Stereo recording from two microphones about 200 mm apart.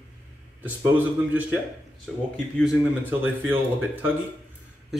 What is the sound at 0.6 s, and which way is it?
Speech, 10° right (ahead or behind).